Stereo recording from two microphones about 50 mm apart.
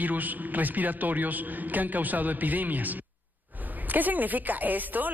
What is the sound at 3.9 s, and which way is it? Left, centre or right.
A man's voice, right.